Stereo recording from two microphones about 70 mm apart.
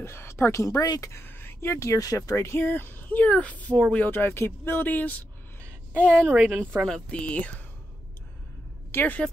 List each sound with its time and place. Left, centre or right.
0.0 s speech: left
1.1 s speech: left
2.3 s speech: left
5.9 s a woman's voice: right
6.3 s a woman's voice: centre
7.1 s speech: centre
8.9 s a woman's voice: left